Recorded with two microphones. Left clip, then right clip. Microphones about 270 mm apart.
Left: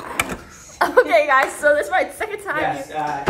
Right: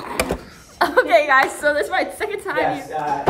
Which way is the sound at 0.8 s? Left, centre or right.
Centre.